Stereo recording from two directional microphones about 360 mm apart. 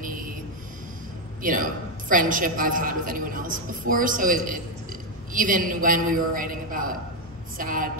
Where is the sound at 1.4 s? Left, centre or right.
Right.